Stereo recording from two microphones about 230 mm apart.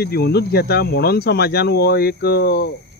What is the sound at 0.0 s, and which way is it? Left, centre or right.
Speech, left.